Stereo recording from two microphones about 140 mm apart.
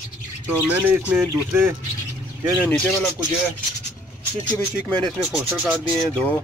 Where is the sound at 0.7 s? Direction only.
10° right (ahead or behind).